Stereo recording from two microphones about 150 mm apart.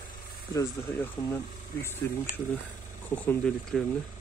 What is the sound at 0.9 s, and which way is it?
Speech, 15° left (ahead or behind).